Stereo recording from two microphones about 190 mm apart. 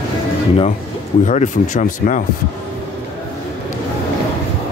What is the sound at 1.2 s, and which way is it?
Speech, 40° left (ahead or behind).